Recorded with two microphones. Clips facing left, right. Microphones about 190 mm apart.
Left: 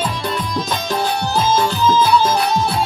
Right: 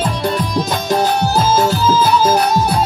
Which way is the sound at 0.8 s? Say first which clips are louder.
Right 6 dB; 40° right (ahead or behind).